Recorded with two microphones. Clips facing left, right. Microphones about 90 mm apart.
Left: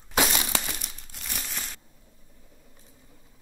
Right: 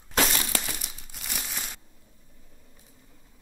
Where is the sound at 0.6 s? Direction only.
5° right (ahead or behind).